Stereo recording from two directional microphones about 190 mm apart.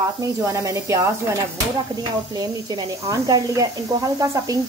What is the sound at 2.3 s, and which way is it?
Speech, 20° right (ahead or behind).